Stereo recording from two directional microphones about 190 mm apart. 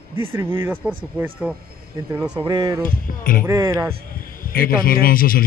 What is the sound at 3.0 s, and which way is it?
Speech, 50° left (ahead or behind).